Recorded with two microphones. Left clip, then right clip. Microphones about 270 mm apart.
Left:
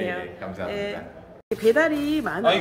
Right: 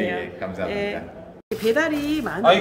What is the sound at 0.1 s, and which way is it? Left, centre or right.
A man's voice, centre.